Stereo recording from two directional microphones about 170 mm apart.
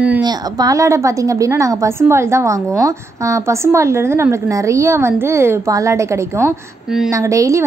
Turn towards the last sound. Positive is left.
turn(degrees=-20)  # may be behind; listen again after turning